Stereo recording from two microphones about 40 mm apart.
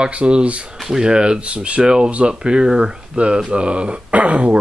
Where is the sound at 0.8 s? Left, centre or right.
Centre.